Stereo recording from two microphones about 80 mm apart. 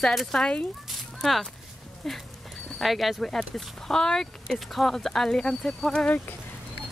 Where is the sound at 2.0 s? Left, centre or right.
Centre.